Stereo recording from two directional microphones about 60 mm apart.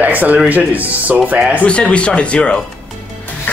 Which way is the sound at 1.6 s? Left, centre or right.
Centre.